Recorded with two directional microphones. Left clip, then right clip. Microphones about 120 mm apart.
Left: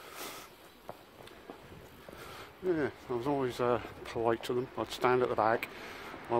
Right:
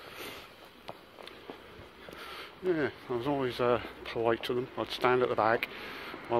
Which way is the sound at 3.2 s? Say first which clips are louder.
Right 2 dB; 25° left (ahead or behind).